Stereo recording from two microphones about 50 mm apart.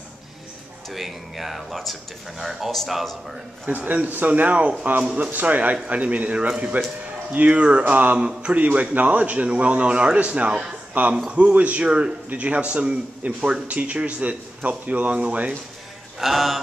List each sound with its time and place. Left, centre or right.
0.8 s speech: centre
3.6 s speech: right
5.0 s a man's voice: right
5.3 s a man's voice: right
7.8 s speech: right
8.2 s a man's voice: right
16.2 s speech: centre